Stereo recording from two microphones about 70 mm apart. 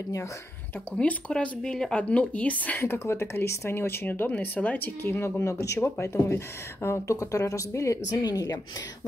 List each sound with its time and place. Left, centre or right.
0.9 s speech: centre
2.8 s speech: left
5.0 s speech: left
5.4 s speech: left
8.2 s speech: left